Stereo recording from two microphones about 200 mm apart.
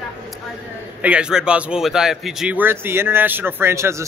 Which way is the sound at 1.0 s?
5° right (ahead or behind).